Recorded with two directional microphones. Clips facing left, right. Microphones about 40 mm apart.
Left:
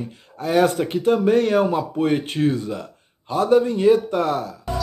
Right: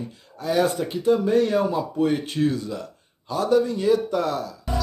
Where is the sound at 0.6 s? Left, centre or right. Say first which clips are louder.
Left 5 dB; left.